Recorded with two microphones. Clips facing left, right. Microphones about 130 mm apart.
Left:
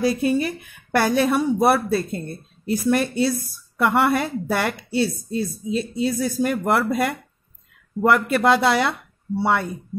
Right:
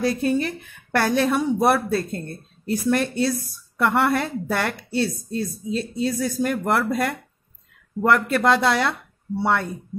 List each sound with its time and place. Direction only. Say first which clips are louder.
0.0 s a woman's voice: left 1 dB; 10° left (ahead or behind)